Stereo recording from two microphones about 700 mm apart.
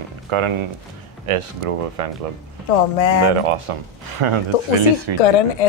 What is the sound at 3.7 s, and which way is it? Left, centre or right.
A woman's voice, right.